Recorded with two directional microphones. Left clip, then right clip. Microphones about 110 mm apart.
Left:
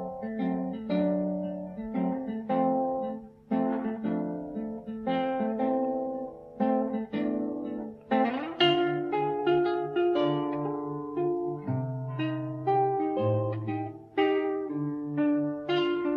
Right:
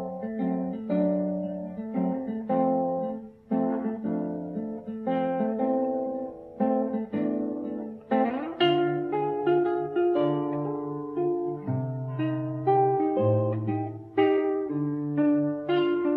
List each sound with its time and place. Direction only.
0.4 s music: 40° left (ahead or behind)
1.1 s music: 25° left (ahead or behind)